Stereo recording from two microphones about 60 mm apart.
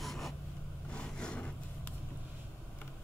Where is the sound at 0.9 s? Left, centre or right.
Centre.